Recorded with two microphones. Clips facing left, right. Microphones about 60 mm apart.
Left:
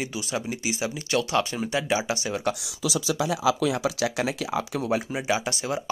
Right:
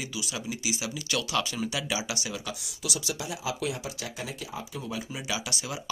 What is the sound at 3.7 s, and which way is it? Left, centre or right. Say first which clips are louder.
Speech: left 10 dB; left.